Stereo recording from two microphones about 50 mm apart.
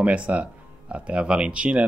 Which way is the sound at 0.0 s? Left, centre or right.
Right.